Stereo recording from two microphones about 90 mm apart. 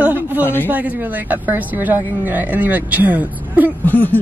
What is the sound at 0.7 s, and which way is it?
Speech, 20° right (ahead or behind).